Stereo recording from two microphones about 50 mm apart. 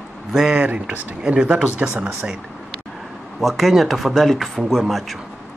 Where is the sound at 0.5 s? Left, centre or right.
Right.